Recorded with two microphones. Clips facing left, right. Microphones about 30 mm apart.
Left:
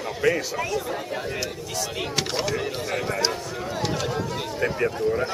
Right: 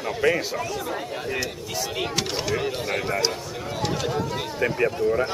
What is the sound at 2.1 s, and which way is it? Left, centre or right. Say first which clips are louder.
Speech: left 1 dB; centre.